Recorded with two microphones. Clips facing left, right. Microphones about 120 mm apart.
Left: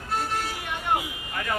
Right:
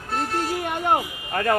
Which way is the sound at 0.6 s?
50° right (ahead or behind).